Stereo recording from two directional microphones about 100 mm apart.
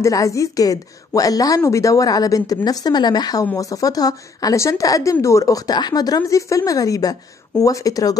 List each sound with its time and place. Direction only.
0.0 s speech: 30° left (ahead or behind)